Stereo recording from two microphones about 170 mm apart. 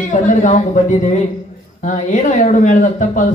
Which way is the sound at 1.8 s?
45° left (ahead or behind).